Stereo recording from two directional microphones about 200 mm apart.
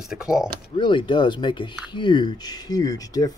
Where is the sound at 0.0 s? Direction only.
5° right (ahead or behind).